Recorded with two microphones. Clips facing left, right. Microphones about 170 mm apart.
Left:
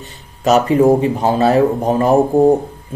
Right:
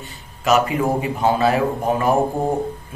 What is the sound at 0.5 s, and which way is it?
Speech, 40° left (ahead or behind).